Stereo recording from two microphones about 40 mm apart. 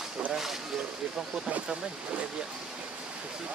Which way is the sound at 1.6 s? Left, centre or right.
Right.